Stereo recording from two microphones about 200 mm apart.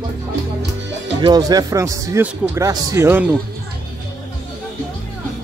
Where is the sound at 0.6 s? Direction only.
60° right (ahead or behind).